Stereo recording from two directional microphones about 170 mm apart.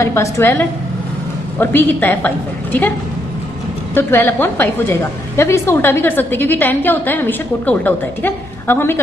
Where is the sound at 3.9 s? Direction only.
10° left (ahead or behind).